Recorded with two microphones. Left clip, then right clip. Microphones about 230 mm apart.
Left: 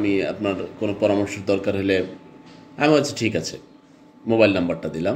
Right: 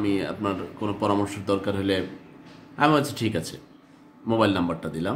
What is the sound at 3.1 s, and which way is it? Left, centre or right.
Speech, centre.